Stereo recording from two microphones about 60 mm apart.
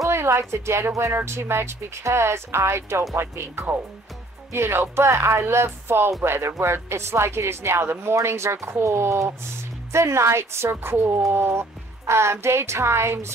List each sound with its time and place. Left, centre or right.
0.0 s a woman's voice: right